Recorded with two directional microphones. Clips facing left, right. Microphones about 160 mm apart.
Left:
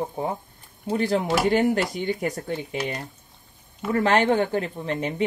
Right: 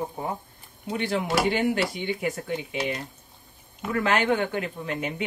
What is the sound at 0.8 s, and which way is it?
Speech, 40° left (ahead or behind).